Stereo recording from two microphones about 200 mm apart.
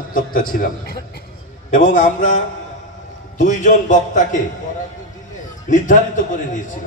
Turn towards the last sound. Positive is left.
turn(degrees=40)  # may be behind; listen again after turning